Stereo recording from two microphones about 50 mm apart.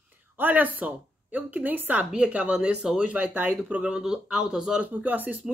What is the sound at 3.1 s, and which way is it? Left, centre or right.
Speech, right.